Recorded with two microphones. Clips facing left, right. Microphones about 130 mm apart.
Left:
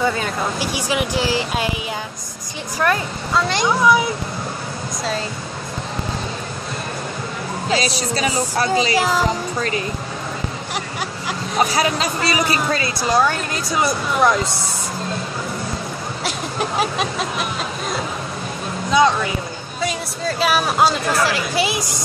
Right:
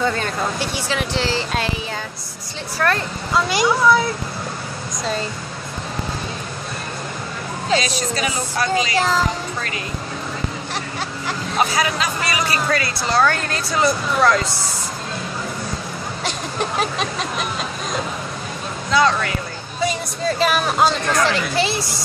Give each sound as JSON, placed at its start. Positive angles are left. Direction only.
{"t": 0.0, "sound": "speech", "side_deg": 10}
{"t": 2.8, "sound": "speech", "side_deg": 15}
{"t": 3.3, "sound": "speech", "side_deg": -5}
{"t": 3.8, "sound": "speech", "side_deg": 15}
{"t": 7.8, "sound": "speech", "side_deg": 35}
{"t": 8.9, "sound": "speech", "side_deg": 10}
{"t": 11.7, "sound": "speech", "side_deg": 35}
{"t": 16.3, "sound": "a sound", "side_deg": 5}
{"t": 18.9, "sound": "speech", "side_deg": 15}
{"t": 19.8, "sound": "speech", "side_deg": 0}